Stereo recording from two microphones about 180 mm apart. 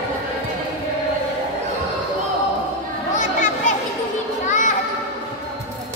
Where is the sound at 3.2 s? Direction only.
45° left (ahead or behind).